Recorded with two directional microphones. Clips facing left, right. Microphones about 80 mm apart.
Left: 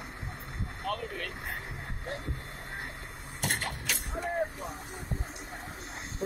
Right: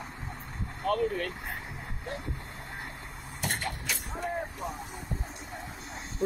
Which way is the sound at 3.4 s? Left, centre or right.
Left.